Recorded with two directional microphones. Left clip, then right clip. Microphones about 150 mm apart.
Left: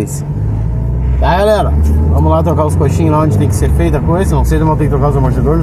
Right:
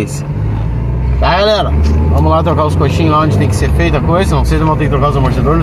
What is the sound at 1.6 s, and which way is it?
Speech, centre (ahead or behind).